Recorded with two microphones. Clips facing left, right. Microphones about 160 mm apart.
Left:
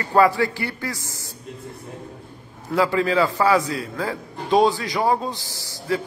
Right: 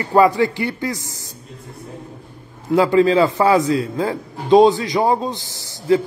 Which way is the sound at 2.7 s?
20° right (ahead or behind).